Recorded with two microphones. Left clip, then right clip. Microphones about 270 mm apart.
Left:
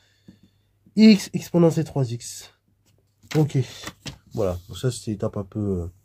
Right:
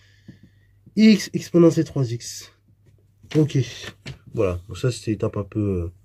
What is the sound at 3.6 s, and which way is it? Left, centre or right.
Speech, left.